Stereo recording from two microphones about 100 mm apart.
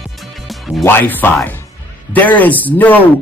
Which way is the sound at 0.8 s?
20° left (ahead or behind).